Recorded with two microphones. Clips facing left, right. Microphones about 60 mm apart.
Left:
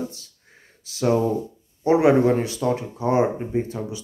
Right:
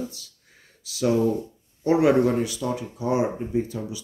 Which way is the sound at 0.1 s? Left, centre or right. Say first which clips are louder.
Left 2 dB; left.